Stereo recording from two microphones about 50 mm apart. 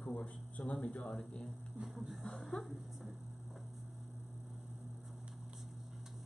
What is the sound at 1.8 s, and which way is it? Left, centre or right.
Speech, centre.